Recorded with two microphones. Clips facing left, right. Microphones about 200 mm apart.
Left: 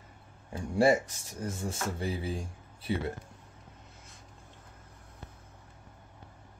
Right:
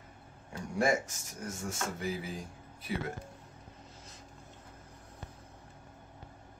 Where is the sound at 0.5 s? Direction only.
30° left (ahead or behind).